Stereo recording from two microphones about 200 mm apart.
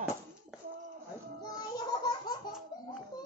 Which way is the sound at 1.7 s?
20° left (ahead or behind).